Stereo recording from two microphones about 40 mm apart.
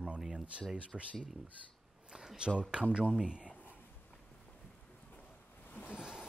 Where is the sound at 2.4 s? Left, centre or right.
Right.